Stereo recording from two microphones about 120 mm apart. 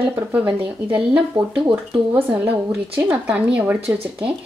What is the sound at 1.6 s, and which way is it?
Speech, 45° right (ahead or behind).